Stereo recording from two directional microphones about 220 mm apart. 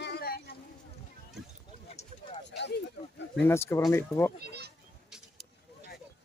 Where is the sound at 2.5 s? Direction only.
50° left (ahead or behind).